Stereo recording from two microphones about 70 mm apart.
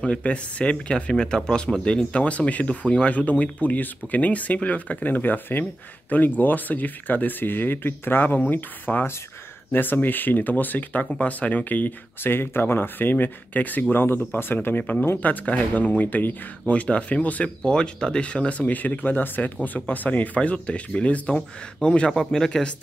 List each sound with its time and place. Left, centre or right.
0.0 s speech: centre